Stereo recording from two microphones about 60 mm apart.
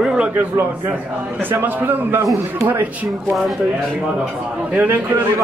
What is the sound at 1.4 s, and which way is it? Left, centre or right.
A man's voice, right.